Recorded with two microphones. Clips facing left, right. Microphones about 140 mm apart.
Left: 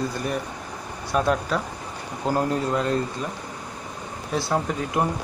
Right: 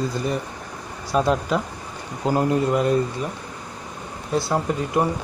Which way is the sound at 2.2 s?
10° right (ahead or behind).